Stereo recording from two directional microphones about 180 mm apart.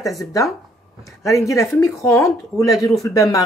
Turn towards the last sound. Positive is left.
turn(degrees=20)  # may be behind; listen again after turning